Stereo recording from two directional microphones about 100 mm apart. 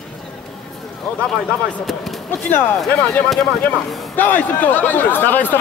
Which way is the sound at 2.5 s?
20° left (ahead or behind).